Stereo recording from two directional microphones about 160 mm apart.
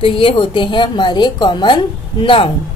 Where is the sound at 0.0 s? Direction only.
35° left (ahead or behind).